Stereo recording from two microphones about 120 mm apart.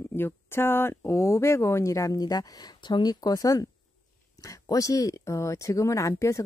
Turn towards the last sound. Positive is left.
turn(degrees=25)  # may be behind; listen again after turning